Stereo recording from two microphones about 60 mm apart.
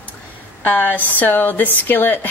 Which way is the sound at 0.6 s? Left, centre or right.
Left.